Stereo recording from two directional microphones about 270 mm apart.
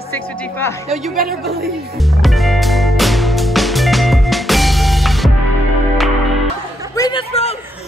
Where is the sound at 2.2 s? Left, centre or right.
Centre.